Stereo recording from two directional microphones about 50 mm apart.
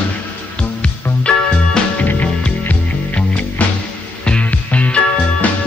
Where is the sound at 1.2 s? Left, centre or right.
Left.